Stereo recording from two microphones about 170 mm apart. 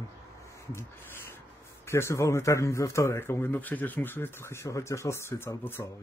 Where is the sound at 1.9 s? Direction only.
15° left (ahead or behind).